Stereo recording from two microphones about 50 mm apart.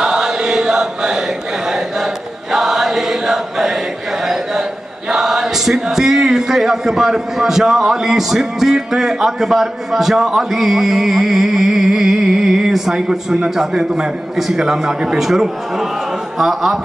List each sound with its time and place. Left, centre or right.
0.0 s chant: centre
2.5 s chant: centre
5.1 s speech: centre